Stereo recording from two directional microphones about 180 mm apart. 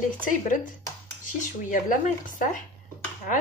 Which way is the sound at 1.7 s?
45° left (ahead or behind).